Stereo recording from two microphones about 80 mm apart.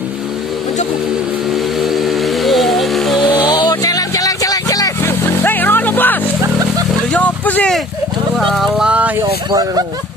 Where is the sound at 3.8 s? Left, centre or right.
Left.